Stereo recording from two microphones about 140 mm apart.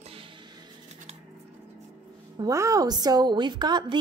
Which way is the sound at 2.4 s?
20° right (ahead or behind).